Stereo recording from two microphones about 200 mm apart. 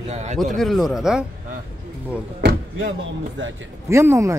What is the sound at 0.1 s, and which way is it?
Speech, 35° right (ahead or behind).